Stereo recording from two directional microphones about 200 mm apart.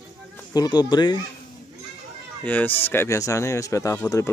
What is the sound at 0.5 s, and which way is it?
Music, 20° left (ahead or behind).